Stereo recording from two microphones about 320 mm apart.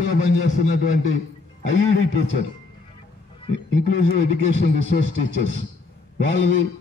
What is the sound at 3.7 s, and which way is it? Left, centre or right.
A man's voice, left.